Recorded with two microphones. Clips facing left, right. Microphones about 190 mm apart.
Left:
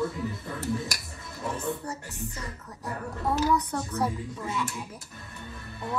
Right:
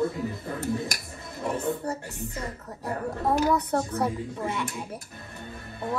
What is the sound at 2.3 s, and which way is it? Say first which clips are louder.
Speech: right 5 dB; 35° right (ahead or behind).